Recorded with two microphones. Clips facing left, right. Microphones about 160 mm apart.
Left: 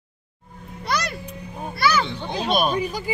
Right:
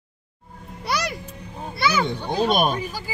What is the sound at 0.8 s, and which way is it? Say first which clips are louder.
Music: even; 10° right (ahead or behind).